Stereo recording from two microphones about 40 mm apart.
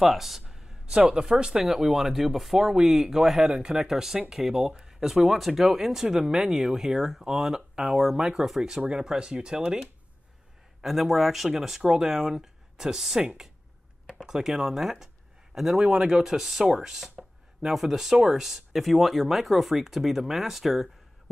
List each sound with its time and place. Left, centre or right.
0.0 s speech: centre
1.1 s speech: centre
10.8 s speech: centre